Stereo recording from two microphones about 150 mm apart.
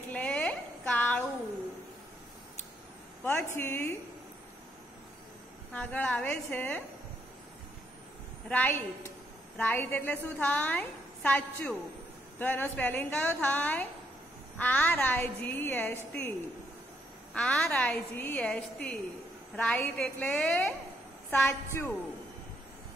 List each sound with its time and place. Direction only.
0.1 s a sound: 10° left (ahead or behind)
3.3 s a woman's voice: 15° left (ahead or behind)
5.7 s a woman's voice: 10° left (ahead or behind)
8.5 s a woman's voice: 10° left (ahead or behind)
17.3 s a woman's voice: 5° left (ahead or behind)